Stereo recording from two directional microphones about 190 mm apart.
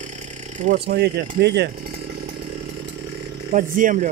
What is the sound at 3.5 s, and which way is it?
Speech, 45° right (ahead or behind).